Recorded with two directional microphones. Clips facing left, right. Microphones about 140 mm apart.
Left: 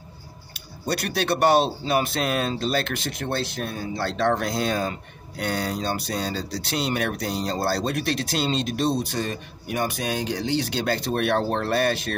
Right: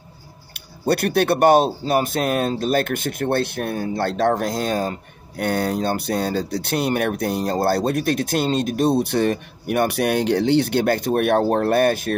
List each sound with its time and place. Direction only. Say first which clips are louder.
0.8 s speech: right 7 dB; 55° right (ahead or behind)